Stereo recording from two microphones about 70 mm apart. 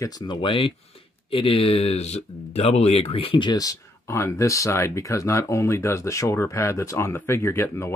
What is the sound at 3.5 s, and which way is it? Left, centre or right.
Speech, left.